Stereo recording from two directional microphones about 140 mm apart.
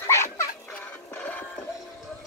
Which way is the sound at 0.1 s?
20° left (ahead or behind).